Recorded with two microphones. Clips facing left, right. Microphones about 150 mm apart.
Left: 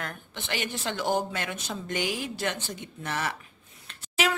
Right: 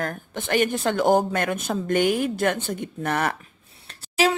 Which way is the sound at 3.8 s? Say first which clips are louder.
Right 6 dB; 35° right (ahead or behind).